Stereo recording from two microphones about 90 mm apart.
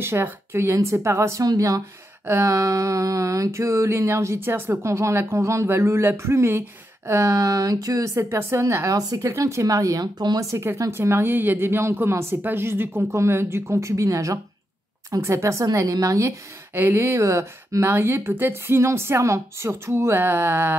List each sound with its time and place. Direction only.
0.0 s a woman's voice: 25° right (ahead or behind)
1.4 s a woman's voice: 40° right (ahead or behind)
2.2 s a woman's voice: 30° right (ahead or behind); by 10.4 s 50° right (ahead or behind)
10.4 s a woman's voice: 30° right (ahead or behind)